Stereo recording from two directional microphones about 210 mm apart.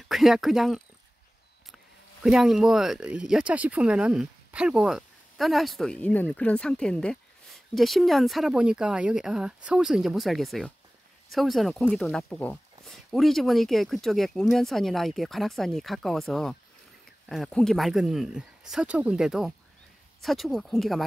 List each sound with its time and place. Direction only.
0.1 s speech: centre (ahead or behind)
2.2 s speech: centre (ahead or behind)